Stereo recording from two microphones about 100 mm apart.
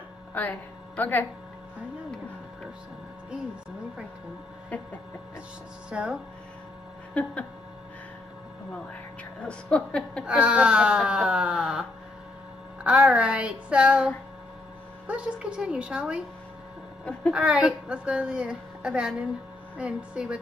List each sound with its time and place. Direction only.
0.3 s speech: 15° left (ahead or behind)
5.9 s a woman's voice: 10° right (ahead or behind)
7.2 s speech: 10° left (ahead or behind)
9.4 s speech: 10° left (ahead or behind)
10.2 s a woman's voice: 10° right (ahead or behind)
12.8 s a woman's voice: 10° right (ahead or behind)
17.3 s a woman's voice: 10° right (ahead or behind)